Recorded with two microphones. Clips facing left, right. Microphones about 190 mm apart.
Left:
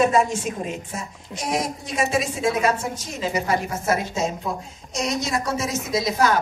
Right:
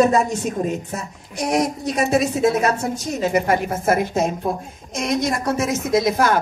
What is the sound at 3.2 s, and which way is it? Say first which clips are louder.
A woman's voice: right 4 dB; 55° right (ahead or behind).